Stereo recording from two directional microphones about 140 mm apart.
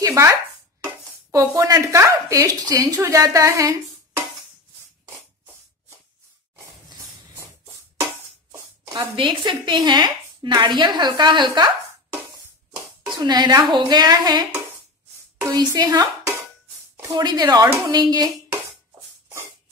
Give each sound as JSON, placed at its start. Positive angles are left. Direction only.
{"t": 0.0, "sound": "chopping", "side_deg": -20}
{"t": 1.3, "sound": "speech", "side_deg": -20}
{"t": 8.5, "sound": "a sound", "side_deg": -25}
{"t": 9.1, "sound": "a woman's voice", "side_deg": -35}
{"t": 13.2, "sound": "a woman's voice", "side_deg": -30}
{"t": 15.4, "sound": "a woman's voice", "side_deg": -30}